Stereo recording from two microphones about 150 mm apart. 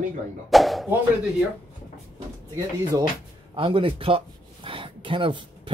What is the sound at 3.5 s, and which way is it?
Speech, 35° right (ahead or behind).